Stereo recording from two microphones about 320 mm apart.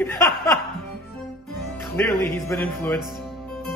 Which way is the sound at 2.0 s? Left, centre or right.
Centre.